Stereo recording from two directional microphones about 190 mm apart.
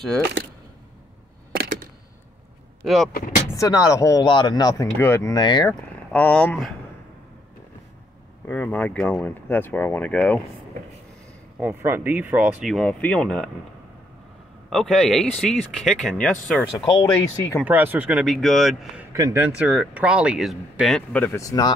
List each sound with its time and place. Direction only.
2.8 s speech: centre (ahead or behind)
3.5 s speech: 20° left (ahead or behind)
5.7 s speech: 10° left (ahead or behind)
8.5 s speech: 10° left (ahead or behind)
11.6 s speech: 10° right (ahead or behind)
14.7 s speech: centre (ahead or behind)
16.7 s speech: 15° left (ahead or behind)
17.6 s speech: 10° right (ahead or behind)
19.1 s speech: 15° right (ahead or behind); by 21.7 s 20° left (ahead or behind)